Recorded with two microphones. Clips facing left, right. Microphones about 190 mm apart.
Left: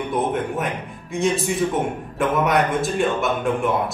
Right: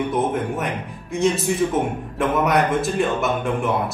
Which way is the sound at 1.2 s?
Centre (ahead or behind).